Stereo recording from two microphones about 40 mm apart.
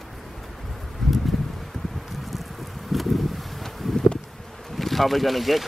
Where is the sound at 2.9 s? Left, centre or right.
Centre.